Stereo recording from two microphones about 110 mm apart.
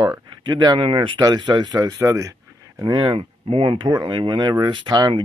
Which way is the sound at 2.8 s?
40° right (ahead or behind).